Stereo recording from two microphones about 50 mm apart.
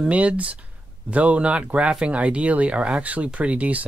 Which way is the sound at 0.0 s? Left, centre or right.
Right.